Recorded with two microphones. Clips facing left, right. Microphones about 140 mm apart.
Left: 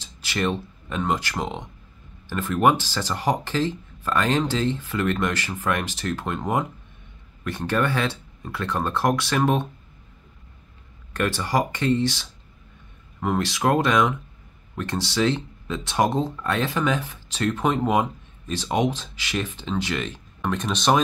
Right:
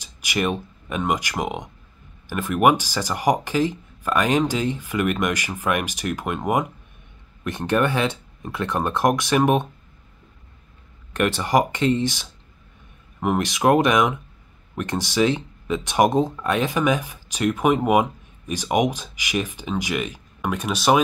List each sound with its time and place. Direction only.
0.0 s speech: 15° right (ahead or behind)
11.1 s speech: 20° right (ahead or behind)